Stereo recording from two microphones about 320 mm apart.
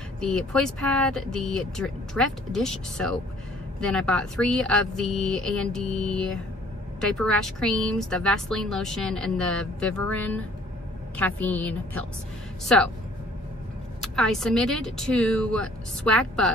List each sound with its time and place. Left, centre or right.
0.2 s speech: centre
14.0 s speech: centre